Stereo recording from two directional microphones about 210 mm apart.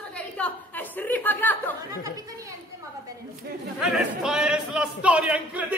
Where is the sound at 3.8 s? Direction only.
Centre (ahead or behind).